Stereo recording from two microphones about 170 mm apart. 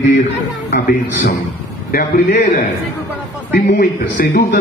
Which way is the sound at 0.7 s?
55° left (ahead or behind).